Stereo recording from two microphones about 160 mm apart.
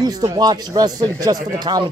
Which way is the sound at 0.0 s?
25° right (ahead or behind).